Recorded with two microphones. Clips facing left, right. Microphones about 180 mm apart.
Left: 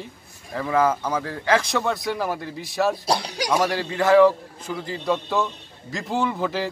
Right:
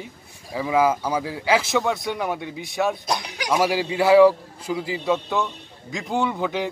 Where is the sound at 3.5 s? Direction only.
10° right (ahead or behind).